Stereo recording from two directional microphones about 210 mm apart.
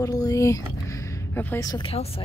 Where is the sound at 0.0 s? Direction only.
15° left (ahead or behind).